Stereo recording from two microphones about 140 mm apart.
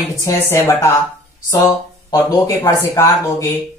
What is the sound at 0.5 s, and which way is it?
Speech, 20° left (ahead or behind).